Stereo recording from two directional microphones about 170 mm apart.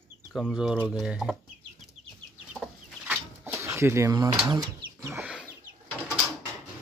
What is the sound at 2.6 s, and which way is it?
Chicken, 5° right (ahead or behind).